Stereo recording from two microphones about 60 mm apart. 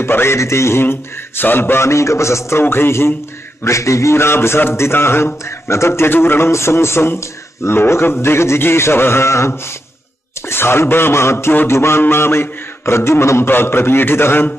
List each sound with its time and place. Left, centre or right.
0.0 s a man's voice: left
2.6 s beatboxing: left
3.6 s a man's voice: left
12.0 s beatboxing: left